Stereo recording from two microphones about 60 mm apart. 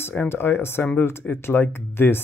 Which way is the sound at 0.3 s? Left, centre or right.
Left.